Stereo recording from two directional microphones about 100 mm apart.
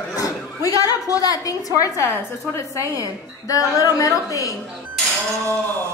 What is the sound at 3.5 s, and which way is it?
A woman's voice, 35° left (ahead or behind).